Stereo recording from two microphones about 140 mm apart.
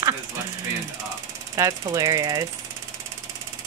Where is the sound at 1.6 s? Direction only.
25° right (ahead or behind).